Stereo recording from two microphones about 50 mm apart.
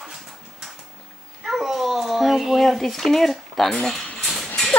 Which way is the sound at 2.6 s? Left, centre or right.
Centre.